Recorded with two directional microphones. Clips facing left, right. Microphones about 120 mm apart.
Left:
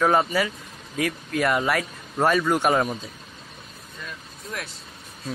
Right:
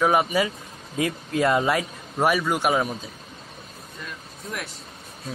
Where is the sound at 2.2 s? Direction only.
10° right (ahead or behind).